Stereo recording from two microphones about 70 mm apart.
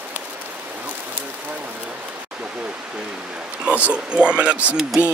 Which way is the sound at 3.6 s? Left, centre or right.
Centre.